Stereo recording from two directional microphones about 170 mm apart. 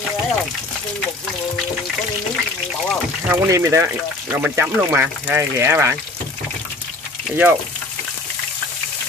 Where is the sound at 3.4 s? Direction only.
15° right (ahead or behind).